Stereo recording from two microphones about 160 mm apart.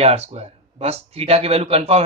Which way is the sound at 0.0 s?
40° right (ahead or behind).